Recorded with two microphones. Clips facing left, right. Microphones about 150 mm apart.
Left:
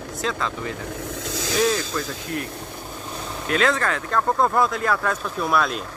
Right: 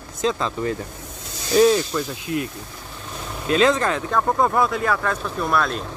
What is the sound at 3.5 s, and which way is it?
Speech, 20° right (ahead or behind).